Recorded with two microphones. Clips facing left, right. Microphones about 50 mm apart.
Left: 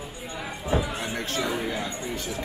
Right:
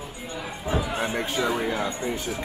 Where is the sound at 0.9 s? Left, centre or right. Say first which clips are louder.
Right 3 dB; centre.